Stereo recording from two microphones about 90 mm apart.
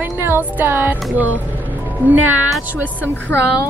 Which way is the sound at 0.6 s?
25° right (ahead or behind).